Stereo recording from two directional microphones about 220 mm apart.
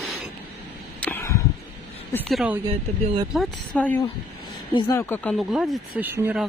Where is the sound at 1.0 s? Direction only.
10° left (ahead or behind).